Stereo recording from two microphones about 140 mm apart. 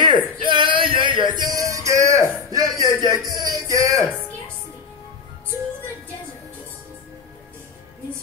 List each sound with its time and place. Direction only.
0.0 s a sound: 35° right (ahead or behind)
2.7 s music: 25° left (ahead or behind)
3.6 s music: 25° right (ahead or behind)